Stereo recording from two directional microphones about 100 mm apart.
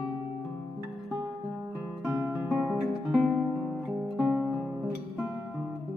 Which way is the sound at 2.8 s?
5° right (ahead or behind).